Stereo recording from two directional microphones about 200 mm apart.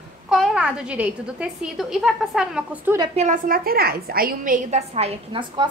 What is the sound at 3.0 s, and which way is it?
A woman's voice, 30° right (ahead or behind).